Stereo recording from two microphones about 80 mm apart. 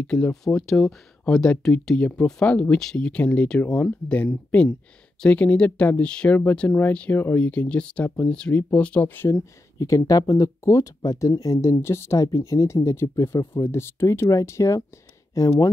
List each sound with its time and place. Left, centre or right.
0.0 s speech: centre
9.8 s speech: left